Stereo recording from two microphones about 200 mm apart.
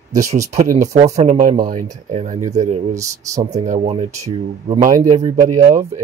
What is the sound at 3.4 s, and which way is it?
Speech, 35° right (ahead or behind).